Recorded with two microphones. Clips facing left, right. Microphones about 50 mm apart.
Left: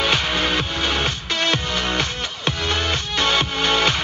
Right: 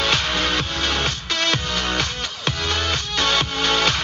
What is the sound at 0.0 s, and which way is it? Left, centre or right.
Music, centre.